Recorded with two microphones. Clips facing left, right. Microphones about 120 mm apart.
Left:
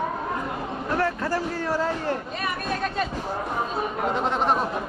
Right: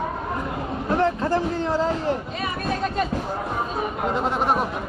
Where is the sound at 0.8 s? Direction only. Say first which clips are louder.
Right 4 dB; 20° right (ahead or behind).